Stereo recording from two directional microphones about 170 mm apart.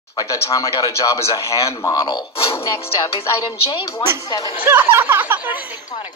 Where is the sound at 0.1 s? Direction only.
20° left (ahead or behind).